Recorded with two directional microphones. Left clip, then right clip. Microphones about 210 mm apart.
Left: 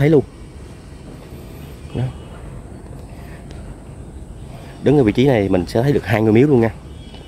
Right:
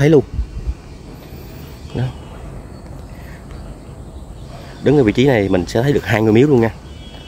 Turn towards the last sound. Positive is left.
turn(degrees=0)  # may be behind; listen again after turning